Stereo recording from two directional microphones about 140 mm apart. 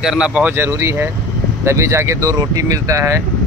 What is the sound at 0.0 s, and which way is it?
Speech, 5° right (ahead or behind).